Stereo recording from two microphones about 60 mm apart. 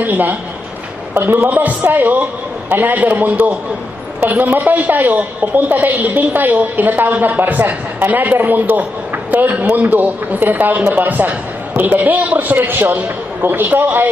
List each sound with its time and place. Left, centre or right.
0.0 s a woman's voice: right